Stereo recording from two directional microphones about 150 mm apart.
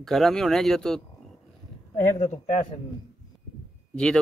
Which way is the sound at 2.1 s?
50° left (ahead or behind).